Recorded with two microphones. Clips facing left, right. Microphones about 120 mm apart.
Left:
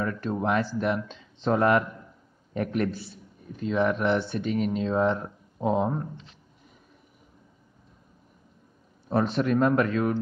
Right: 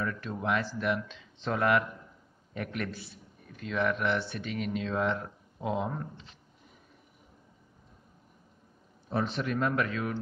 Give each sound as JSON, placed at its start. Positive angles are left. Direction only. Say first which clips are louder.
{"t": 0.0, "sound": "a man's voice", "louder": "left 6 dB", "side_deg": 40}
{"t": 9.1, "sound": "speech", "louder": "left 7 dB", "side_deg": 45}